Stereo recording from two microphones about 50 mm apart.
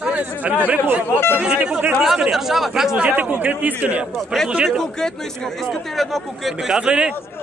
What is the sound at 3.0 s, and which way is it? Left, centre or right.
A man's voice, right.